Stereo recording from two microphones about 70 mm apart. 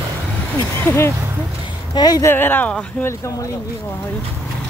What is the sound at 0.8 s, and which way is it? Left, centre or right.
Speech, left.